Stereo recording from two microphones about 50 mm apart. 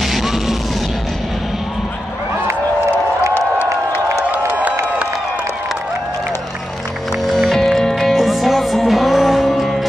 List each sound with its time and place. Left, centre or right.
0.0 s music: centre
7.2 s music: centre